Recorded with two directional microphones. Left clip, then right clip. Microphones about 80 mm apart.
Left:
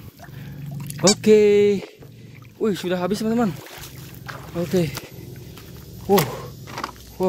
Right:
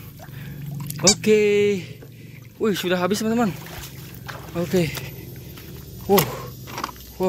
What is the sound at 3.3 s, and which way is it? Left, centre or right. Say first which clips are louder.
Speech: even; left.